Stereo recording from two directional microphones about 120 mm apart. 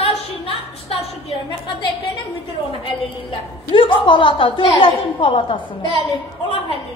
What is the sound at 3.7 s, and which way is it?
A woman's voice, 45° left (ahead or behind).